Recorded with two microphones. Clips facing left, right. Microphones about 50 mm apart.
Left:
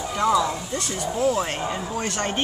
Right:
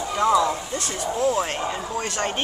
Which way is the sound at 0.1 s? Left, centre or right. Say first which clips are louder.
Right 1 dB; centre.